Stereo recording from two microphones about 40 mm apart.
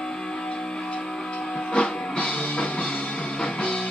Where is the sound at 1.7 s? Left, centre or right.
Left.